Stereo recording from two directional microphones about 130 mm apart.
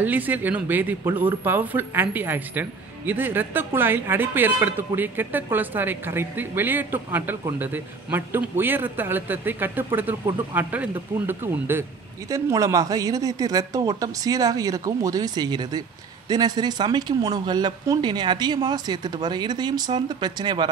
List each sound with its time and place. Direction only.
0.0 s speech: 15° right (ahead or behind); by 20.7 s 35° right (ahead or behind)